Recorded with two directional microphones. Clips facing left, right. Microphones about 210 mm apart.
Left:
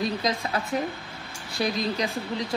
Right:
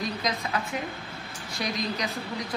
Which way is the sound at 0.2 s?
30° left (ahead or behind).